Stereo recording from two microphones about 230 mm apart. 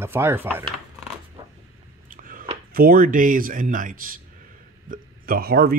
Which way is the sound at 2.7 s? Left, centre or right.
Right.